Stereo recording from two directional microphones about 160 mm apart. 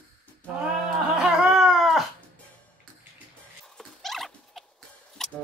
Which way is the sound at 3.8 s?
Centre (ahead or behind).